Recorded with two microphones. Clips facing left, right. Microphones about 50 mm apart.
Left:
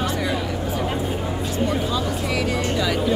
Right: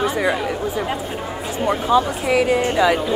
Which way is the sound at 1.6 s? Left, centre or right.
Right.